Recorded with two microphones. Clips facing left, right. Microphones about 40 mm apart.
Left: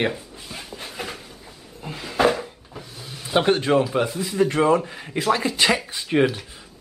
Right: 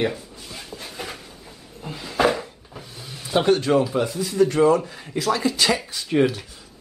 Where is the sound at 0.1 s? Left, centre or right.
Centre.